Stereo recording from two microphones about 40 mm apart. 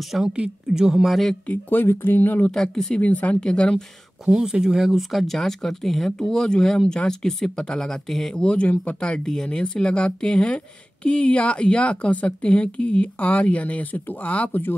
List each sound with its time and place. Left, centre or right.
0.2 s a woman's voice: centre
1.0 s speech: centre
1.9 s speech: left
2.5 s speech: centre
3.0 s speech: left
3.3 s speech: left
4.3 s a woman's voice: centre
5.1 s speech: centre
6.2 s speech: centre
8.1 s speech: centre
8.4 s speech: left
9.0 s speech: left